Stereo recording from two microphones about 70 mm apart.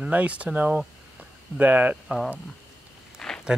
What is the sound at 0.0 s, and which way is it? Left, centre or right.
Speech, centre.